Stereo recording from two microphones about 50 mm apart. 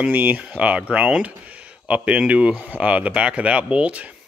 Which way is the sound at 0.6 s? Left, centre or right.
Right.